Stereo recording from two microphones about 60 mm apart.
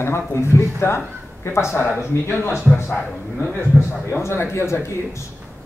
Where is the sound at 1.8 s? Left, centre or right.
Left.